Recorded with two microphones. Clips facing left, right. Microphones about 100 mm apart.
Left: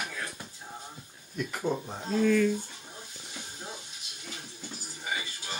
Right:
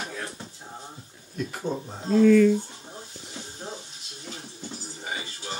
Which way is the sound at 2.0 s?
45° right (ahead or behind).